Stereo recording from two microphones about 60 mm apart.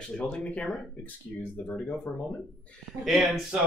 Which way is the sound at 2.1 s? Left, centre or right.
Left.